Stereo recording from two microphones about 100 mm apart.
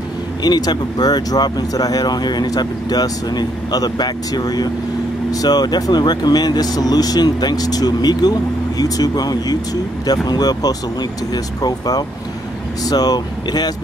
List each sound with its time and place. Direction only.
0.4 s speech: 40° left (ahead or behind)